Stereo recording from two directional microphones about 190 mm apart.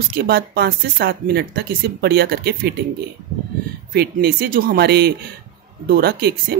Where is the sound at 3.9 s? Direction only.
55° right (ahead or behind).